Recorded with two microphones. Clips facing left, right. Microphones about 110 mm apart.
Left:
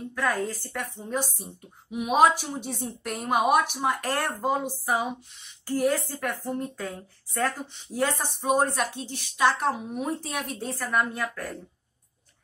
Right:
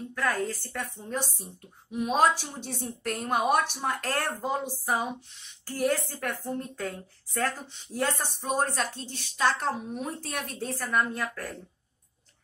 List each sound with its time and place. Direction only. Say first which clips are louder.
0.1 s a woman's voice: left 1 dB; 15° left (ahead or behind)